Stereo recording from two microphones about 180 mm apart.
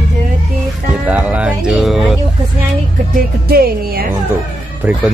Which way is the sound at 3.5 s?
55° right (ahead or behind).